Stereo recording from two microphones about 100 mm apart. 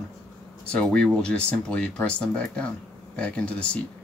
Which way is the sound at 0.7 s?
10° left (ahead or behind).